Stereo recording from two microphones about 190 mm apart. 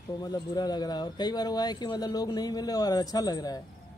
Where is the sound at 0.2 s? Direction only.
20° left (ahead or behind).